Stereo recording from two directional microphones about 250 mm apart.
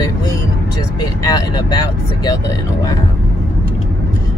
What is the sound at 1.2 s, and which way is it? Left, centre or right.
Speech, centre.